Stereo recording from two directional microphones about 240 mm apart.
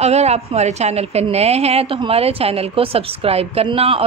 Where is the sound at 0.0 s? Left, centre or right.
Right.